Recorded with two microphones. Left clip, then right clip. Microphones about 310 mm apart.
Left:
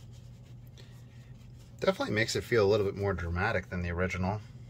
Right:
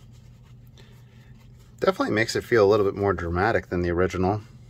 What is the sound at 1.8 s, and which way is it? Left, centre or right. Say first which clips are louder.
Speech: right 7 dB; centre.